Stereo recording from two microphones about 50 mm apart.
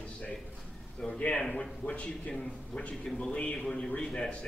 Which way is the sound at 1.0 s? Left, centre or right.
Left.